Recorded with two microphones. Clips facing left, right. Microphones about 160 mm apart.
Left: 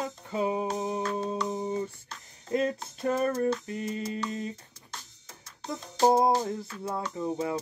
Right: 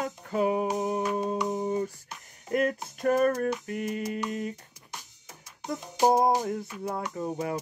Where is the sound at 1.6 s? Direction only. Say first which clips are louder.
Right 2 dB; 50° right (ahead or behind).